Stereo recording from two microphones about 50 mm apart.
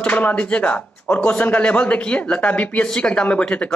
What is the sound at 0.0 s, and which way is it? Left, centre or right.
Speech, left.